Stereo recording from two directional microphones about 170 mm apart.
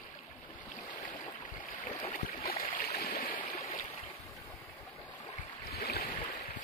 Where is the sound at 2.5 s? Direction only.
55° left (ahead or behind).